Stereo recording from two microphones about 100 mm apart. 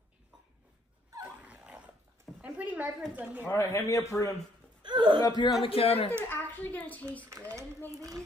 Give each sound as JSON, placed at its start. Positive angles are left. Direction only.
{"t": 1.2, "sound": "dog", "side_deg": -15}
{"t": 2.4, "sound": "a sound", "side_deg": -15}
{"t": 3.4, "sound": "a man's voice", "side_deg": 30}
{"t": 4.8, "sound": "speech", "side_deg": -50}
{"t": 5.2, "sound": "speech", "side_deg": 40}
{"t": 5.6, "sound": "a man's voice", "side_deg": 70}
{"t": 6.2, "sound": "a child's voice", "side_deg": 20}
{"t": 7.2, "sound": "speech", "side_deg": -30}